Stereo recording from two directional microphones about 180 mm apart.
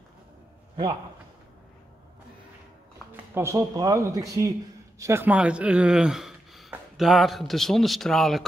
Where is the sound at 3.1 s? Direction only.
15° right (ahead or behind).